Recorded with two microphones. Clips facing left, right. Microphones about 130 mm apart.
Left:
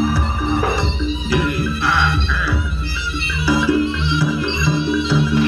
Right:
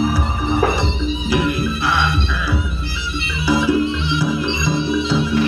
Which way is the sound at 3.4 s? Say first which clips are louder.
Even; 20° right (ahead or behind).